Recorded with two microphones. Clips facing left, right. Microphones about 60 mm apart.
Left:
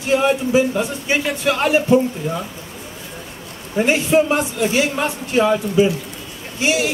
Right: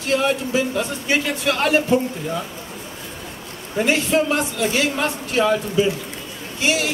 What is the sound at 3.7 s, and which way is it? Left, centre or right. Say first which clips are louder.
Speech: left 3 dB; centre.